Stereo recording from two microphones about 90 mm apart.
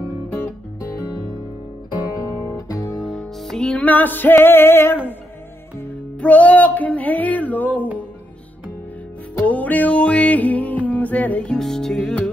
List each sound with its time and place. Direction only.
2.1 s guitar: 45° left (ahead or behind)
3.0 s music: 5° left (ahead or behind); by 4.9 s 25° left (ahead or behind)
6.2 s music: 15° left (ahead or behind)
9.5 s music: 15° left (ahead or behind)